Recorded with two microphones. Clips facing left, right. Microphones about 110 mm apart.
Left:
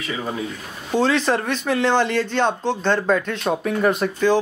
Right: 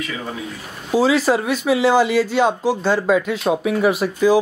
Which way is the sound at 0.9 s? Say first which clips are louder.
Right 3 dB; 5° right (ahead or behind).